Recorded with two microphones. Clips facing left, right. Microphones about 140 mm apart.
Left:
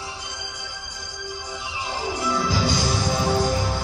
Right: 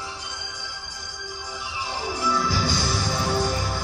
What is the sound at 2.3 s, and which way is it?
Music, 20° left (ahead or behind).